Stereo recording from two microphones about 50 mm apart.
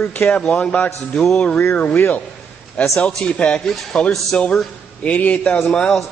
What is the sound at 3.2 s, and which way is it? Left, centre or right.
A man's voice, left.